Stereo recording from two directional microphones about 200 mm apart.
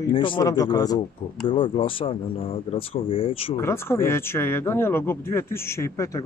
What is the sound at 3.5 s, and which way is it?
Speech, 10° left (ahead or behind).